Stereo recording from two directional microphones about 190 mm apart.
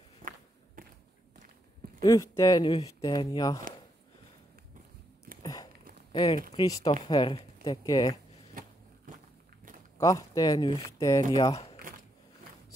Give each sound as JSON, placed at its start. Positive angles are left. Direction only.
{"t": 0.2, "sound": "walk", "side_deg": -45}
{"t": 0.8, "sound": "a sound", "side_deg": -45}
{"t": 2.0, "sound": "speech", "side_deg": 15}
{"t": 5.4, "sound": "a sound", "side_deg": 20}
{"t": 6.1, "sound": "speech", "side_deg": 25}
{"t": 9.9, "sound": "speech", "side_deg": 15}
{"t": 11.5, "sound": "crumpling", "side_deg": 35}